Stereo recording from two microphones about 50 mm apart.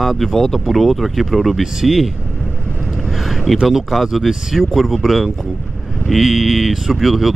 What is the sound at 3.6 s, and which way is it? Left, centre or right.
Speech, centre.